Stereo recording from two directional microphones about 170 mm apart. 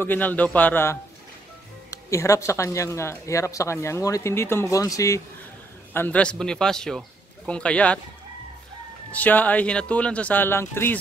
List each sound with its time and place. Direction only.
0.0 s speech: 10° left (ahead or behind)
5.9 s a man's voice: 10° left (ahead or behind)
9.1 s speech: 10° left (ahead or behind)